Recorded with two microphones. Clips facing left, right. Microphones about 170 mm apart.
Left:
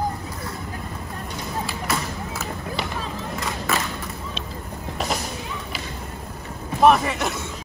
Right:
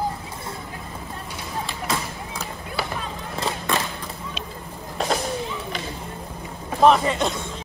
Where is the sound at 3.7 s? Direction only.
5° left (ahead or behind).